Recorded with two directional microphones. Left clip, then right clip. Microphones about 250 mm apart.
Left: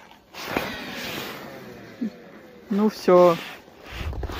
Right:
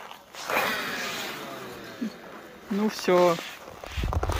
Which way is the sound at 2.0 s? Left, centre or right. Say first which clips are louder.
Left 4 dB; centre.